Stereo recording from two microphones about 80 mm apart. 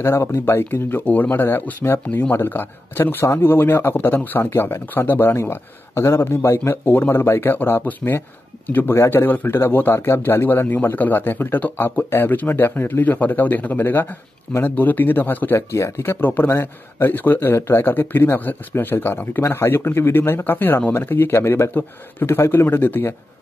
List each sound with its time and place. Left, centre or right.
0.0 s speech: left